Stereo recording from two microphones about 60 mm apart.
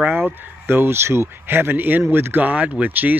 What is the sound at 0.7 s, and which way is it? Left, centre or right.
Speech, right.